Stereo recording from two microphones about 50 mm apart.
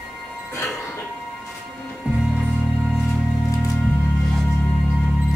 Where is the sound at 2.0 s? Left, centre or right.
Right.